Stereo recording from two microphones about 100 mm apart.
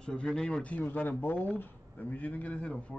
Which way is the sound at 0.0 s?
10° left (ahead or behind).